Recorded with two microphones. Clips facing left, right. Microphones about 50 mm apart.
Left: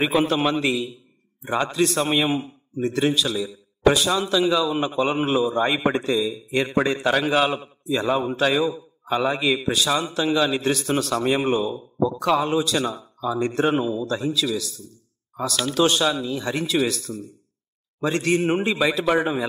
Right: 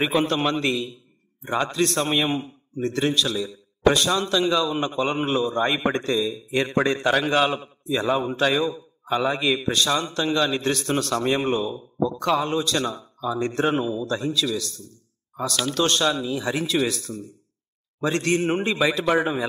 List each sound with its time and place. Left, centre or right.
0.0 s a man's voice: centre